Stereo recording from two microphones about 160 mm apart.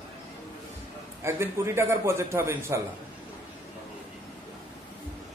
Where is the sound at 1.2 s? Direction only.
15° right (ahead or behind).